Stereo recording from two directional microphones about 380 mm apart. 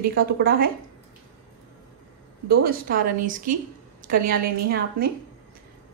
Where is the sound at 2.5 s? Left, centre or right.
Right.